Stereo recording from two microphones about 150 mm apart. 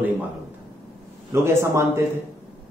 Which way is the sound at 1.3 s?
15° right (ahead or behind).